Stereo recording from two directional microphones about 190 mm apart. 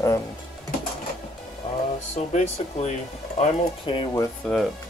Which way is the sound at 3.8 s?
25° left (ahead or behind).